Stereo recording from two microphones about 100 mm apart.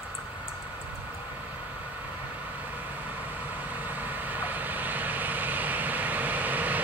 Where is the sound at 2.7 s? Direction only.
15° right (ahead or behind).